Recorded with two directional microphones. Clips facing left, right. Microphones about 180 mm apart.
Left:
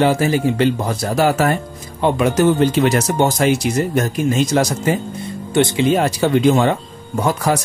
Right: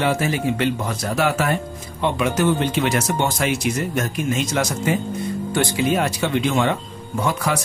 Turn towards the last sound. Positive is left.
turn(degrees=40)  # may be behind; listen again after turning